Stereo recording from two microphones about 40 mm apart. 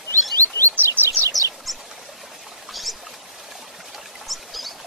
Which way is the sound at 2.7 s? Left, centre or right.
Centre.